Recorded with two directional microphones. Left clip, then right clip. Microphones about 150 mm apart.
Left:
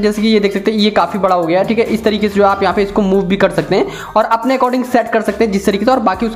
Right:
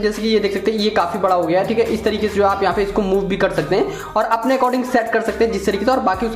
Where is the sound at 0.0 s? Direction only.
25° left (ahead or behind).